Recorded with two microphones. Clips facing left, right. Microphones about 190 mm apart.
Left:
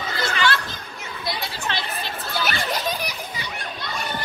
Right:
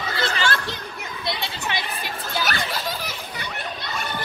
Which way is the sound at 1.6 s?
15° right (ahead or behind).